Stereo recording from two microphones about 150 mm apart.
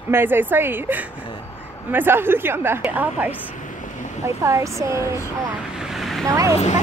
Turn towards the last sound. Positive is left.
turn(degrees=-20)  # may be behind; listen again after turning